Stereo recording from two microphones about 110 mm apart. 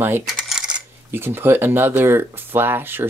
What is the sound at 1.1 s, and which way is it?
Speech, 20° right (ahead or behind).